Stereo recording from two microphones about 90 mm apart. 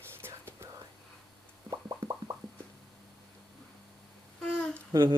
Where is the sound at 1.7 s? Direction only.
40° right (ahead or behind).